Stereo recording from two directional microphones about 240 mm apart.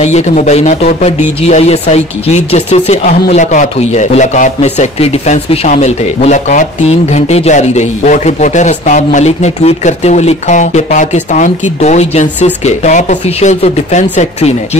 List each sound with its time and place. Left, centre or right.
0.0 s speech: left